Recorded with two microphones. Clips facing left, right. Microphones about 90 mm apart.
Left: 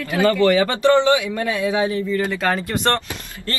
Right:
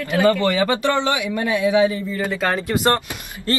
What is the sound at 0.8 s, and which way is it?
Speech, 20° left (ahead or behind).